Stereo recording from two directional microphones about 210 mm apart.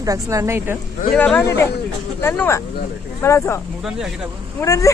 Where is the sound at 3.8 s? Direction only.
Centre (ahead or behind).